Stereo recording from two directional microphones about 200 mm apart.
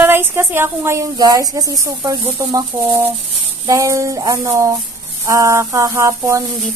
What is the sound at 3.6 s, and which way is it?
Speech, 15° right (ahead or behind).